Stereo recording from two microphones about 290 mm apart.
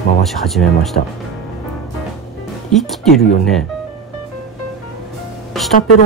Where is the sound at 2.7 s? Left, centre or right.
Centre.